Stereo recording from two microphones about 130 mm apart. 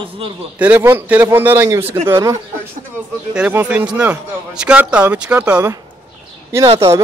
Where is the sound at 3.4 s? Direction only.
15° right (ahead or behind).